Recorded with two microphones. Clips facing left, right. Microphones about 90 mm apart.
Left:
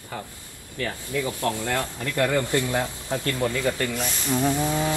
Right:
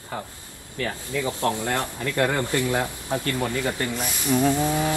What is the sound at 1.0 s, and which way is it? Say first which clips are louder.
Speech: right 1 dB; 25° right (ahead or behind).